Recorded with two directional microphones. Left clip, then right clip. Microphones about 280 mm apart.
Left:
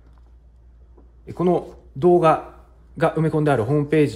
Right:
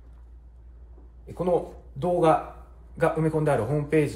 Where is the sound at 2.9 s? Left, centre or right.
Left.